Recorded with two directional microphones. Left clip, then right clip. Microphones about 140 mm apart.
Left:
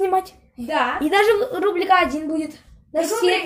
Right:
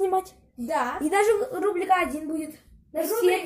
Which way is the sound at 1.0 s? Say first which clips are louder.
Left 5 dB; 5° left (ahead or behind).